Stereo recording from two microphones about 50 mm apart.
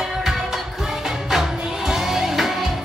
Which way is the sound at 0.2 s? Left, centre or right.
Centre.